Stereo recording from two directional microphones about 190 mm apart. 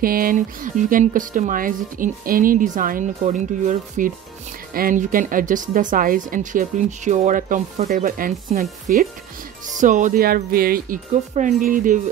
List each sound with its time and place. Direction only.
0.0 s speech: 50° right (ahead or behind)